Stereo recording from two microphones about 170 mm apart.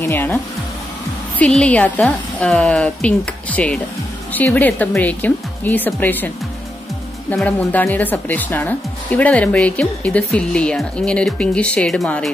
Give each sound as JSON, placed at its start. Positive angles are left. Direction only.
{"t": 0.0, "sound": "speech", "side_deg": 10}
{"t": 1.4, "sound": "speech", "side_deg": 5}